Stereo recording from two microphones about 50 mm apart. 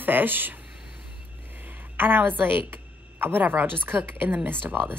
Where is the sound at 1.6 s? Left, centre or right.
Right.